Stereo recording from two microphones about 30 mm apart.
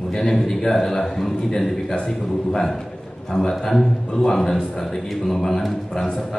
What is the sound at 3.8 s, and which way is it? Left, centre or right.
Speech, left.